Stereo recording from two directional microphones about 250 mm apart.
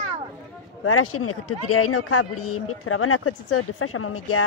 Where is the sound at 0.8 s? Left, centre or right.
Left.